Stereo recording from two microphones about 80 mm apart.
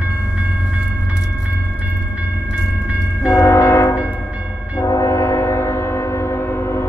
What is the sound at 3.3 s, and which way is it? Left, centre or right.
Train, left.